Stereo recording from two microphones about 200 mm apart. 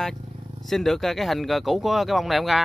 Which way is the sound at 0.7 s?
Centre (ahead or behind).